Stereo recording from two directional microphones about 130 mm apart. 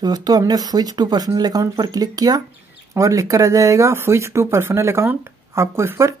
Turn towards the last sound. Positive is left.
turn(degrees=-20)  # may be behind; listen again after turning